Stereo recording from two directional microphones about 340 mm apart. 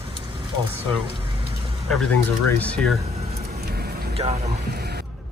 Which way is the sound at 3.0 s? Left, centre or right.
Centre.